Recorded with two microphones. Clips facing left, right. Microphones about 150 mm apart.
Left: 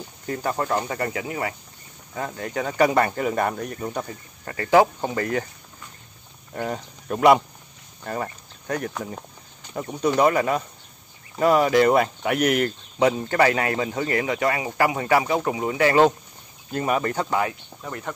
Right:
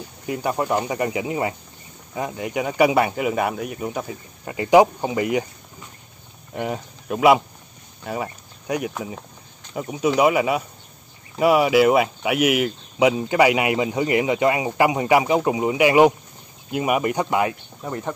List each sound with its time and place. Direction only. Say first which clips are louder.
0.3 s speech: right 2 dB; 15° right (ahead or behind)
6.5 s speech: right 2 dB; 10° right (ahead or behind)